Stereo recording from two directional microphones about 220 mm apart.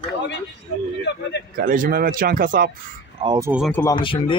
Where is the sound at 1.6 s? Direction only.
40° right (ahead or behind).